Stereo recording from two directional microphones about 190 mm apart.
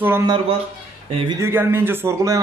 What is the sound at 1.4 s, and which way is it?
Speech, 10° right (ahead or behind).